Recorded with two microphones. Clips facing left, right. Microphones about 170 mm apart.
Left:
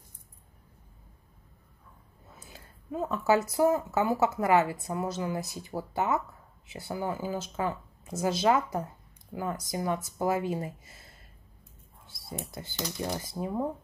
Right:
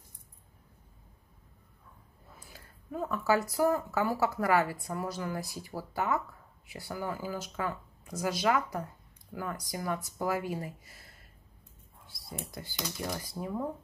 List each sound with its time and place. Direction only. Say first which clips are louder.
2.3 s speech: left 3 dB; 20° left (ahead or behind)
12.6 s speech: left 3 dB; 25° left (ahead or behind)